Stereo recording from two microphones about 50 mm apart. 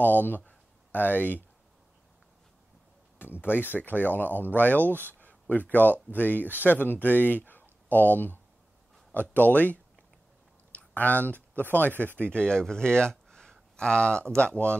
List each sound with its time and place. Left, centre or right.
0.0 s speech: left
0.5 s a sound: left
3.2 s speech: left
4.8 s speech: right
5.2 s a sound: left
6.1 s speech: left
10.7 s a sound: left
11.5 s speech: left
12.3 s speech: centre